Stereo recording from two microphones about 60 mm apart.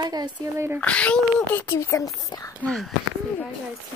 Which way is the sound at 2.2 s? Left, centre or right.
Left.